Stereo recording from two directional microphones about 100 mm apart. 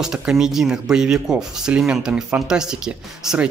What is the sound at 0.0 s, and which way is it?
Speech, 5° right (ahead or behind).